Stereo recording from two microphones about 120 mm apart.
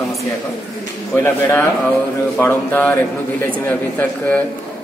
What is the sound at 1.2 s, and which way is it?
Speech, 20° left (ahead or behind).